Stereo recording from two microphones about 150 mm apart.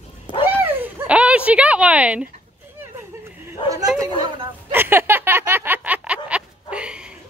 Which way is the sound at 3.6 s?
35° left (ahead or behind).